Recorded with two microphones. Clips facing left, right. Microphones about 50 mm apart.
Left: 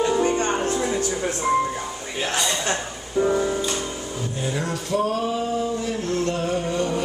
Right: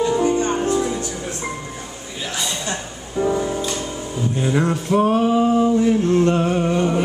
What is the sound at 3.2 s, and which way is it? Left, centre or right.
Music, centre.